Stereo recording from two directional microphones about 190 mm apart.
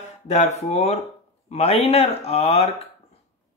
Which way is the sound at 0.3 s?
35° left (ahead or behind).